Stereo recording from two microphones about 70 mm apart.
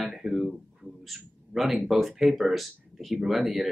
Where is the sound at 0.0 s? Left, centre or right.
Centre.